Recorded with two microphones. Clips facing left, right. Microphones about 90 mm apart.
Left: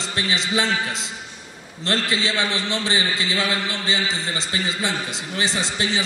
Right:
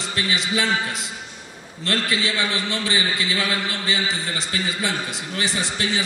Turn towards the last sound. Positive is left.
turn(degrees=25)  # may be behind; listen again after turning